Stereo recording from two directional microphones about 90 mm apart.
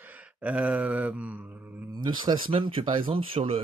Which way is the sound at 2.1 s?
55° right (ahead or behind).